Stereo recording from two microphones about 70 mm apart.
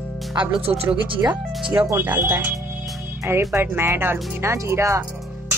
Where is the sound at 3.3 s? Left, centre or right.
Right.